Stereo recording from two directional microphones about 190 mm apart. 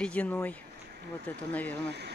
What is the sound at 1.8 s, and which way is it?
Speech, 60° right (ahead or behind).